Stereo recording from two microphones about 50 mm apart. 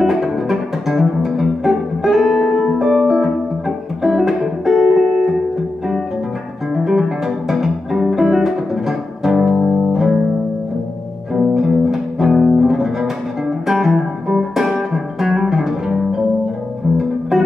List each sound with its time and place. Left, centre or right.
0.0 s music: centre
6.7 s music: centre
11.3 s music: centre